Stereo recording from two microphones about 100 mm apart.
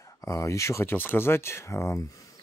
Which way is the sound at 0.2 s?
30° left (ahead or behind).